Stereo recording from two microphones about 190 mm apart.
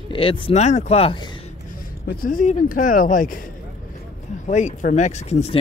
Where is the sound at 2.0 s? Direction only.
50° left (ahead or behind).